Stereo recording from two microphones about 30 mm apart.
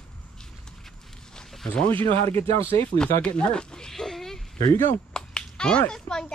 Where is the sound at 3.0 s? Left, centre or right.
Left.